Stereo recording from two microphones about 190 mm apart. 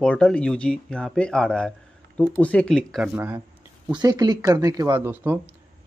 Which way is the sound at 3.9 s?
20° right (ahead or behind).